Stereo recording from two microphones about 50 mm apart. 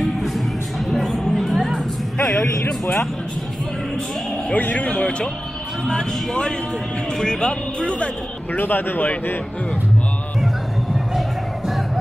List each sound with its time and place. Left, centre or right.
0.8 s music: centre
4.6 s speech: left
8.5 s speech: left